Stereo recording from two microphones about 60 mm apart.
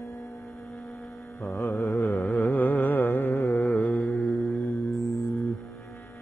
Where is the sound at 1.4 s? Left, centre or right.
Left.